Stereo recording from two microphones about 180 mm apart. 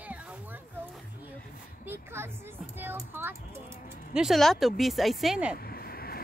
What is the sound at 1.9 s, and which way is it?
Speech, 15° right (ahead or behind).